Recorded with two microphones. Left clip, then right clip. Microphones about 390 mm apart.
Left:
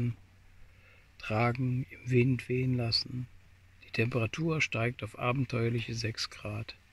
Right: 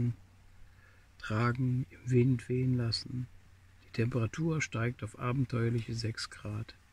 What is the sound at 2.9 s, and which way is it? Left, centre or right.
Speech, centre.